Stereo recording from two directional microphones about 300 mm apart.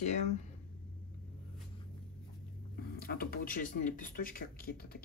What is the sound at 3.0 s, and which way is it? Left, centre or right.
Speech, left.